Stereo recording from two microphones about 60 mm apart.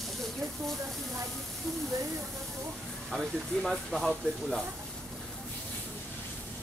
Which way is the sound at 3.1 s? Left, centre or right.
Centre.